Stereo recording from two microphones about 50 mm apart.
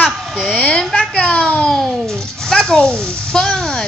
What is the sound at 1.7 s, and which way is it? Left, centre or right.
A child's voice, centre.